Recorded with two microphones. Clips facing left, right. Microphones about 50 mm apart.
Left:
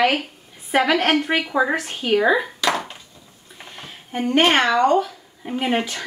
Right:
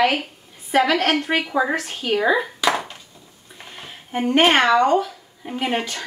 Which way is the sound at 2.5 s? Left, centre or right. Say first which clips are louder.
Right 1 dB; centre.